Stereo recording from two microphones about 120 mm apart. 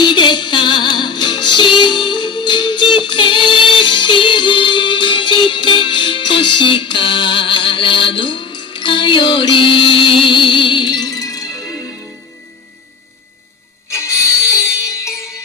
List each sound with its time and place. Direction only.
0.0 s music: 40° left (ahead or behind)
13.9 s music: 25° left (ahead or behind)